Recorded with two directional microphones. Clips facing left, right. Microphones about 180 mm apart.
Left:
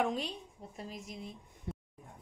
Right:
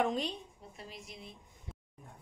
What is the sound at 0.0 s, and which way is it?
Speech, 5° left (ahead or behind).